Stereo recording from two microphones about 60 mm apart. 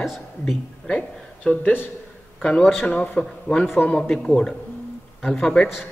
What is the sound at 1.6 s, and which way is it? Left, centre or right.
Speech, left.